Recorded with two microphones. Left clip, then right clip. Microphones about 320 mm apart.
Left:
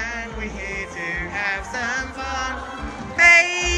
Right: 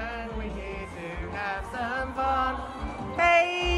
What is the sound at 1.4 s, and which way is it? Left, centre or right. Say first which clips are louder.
Music: left 4 dB; centre.